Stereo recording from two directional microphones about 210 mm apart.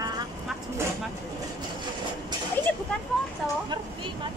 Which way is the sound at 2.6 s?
10° left (ahead or behind).